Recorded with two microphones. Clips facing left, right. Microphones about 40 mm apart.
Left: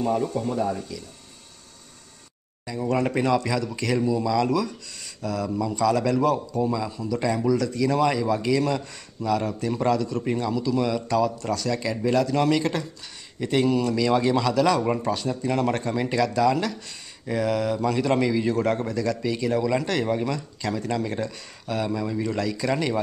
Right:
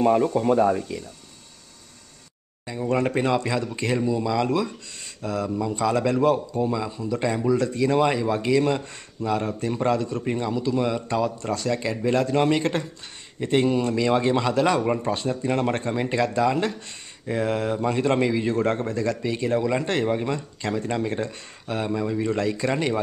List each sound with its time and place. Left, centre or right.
0.0 s speech: right
2.7 s speech: right